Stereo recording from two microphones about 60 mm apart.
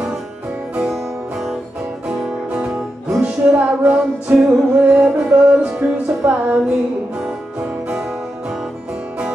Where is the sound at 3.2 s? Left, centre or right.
Right.